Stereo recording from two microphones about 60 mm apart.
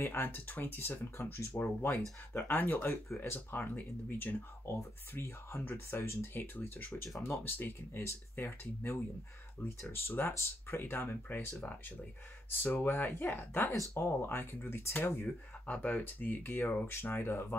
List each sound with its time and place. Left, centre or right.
0.0 s speech: left
1.3 s speech: left
4.7 s speech: left
12.7 s speech: left
15.2 s speech: left